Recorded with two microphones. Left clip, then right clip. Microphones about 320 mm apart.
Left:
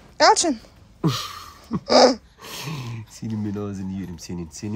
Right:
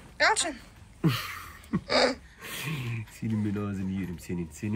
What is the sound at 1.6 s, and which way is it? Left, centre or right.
Speech, centre.